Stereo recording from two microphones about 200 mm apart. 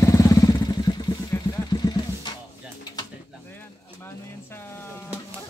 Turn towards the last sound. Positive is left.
turn(degrees=10)  # may be behind; listen again after turning